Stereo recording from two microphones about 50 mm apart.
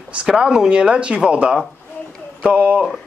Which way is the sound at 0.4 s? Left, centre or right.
Centre.